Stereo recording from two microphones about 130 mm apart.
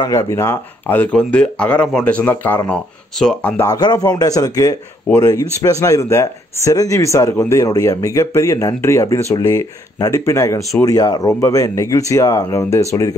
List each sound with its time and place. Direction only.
0.0 s speech: 25° left (ahead or behind)
3.2 s speech: 5° left (ahead or behind)
3.6 s speech: 30° left (ahead or behind)